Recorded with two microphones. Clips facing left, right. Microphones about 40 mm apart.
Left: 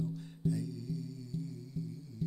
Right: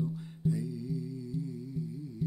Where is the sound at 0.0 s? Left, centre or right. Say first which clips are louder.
Right 3 dB; centre.